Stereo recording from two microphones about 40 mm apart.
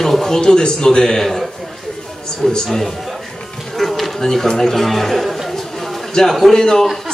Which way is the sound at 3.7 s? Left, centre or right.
Centre.